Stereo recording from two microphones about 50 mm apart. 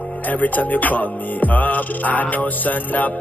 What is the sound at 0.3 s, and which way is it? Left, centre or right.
Music, left.